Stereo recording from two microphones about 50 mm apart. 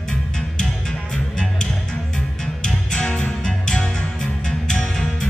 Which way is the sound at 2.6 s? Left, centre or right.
Centre.